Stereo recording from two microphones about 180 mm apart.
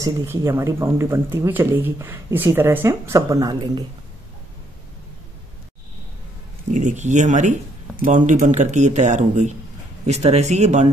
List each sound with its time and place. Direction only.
0.0 s speech: 15° right (ahead or behind)
6.7 s speech: 45° right (ahead or behind)